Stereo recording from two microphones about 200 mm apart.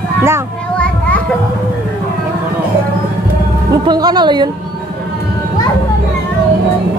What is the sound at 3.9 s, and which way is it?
Speech, 20° right (ahead or behind).